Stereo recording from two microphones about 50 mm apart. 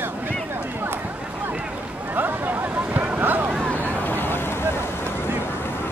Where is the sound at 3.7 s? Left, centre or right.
Left.